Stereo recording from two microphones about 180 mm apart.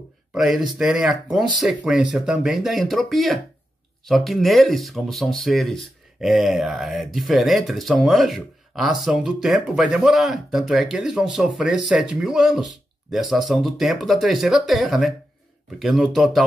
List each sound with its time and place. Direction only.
0.3 s speech: 5° right (ahead or behind)